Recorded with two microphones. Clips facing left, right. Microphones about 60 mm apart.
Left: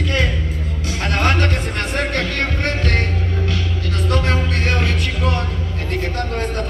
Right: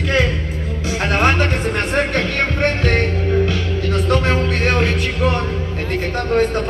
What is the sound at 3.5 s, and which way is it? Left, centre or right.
Music, right.